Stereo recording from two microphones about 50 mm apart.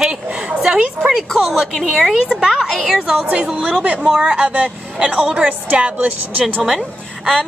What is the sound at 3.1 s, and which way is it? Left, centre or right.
A woman's voice, centre.